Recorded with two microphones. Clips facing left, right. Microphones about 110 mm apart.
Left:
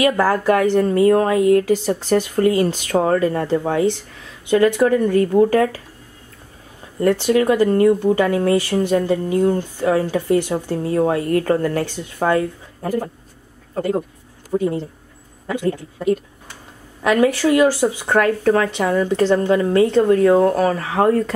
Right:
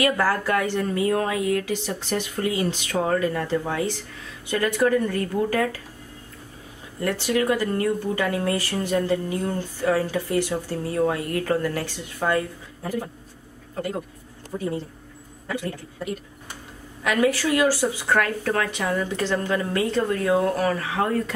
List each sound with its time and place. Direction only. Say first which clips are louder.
0.0 s speech: left 6 dB; 20° left (ahead or behind)
0.6 s speech: left 8 dB; 40° left (ahead or behind)
4.5 s speech: left 7 dB; 20° left (ahead or behind)
5.4 s speech: left 7 dB; 25° left (ahead or behind)
7.0 s speech: left 7 dB; 35° left (ahead or behind)
12.8 s speech: left 7 dB; 50° left (ahead or behind)
13.7 s a woman's voice: left 8 dB; 30° left (ahead or behind)
17.0 s speech: left 6 dB; 30° left (ahead or behind)
18.0 s a woman's voice: left 6 dB; 40° left (ahead or behind)
18.4 s speech: left 8 dB; 25° left (ahead or behind)
18.8 s a woman's voice: left 8 dB; 35° left (ahead or behind)